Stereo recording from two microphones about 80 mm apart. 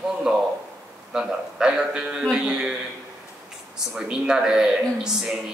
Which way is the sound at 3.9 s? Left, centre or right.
Centre.